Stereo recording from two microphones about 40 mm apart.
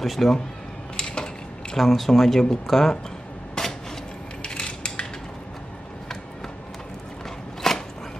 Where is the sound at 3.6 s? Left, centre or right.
Centre.